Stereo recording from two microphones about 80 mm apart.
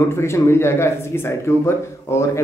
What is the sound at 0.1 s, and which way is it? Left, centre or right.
Speech, left.